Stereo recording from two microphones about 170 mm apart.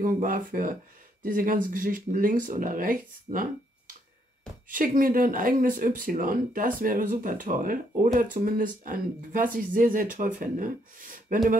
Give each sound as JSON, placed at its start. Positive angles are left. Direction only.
{"t": 0.0, "sound": "speech", "side_deg": -55}